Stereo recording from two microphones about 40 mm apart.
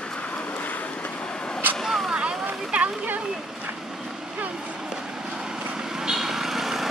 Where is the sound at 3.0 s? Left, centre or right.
Right.